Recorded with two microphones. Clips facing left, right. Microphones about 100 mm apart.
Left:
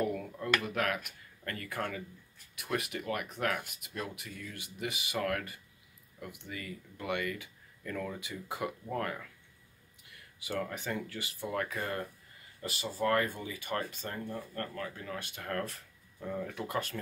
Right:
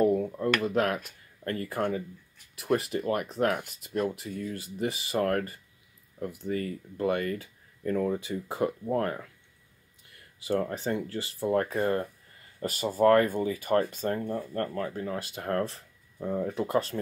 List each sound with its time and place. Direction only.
0.0 s speech: 30° right (ahead or behind)
10.4 s speech: 35° right (ahead or behind)
12.6 s speech: 45° right (ahead or behind)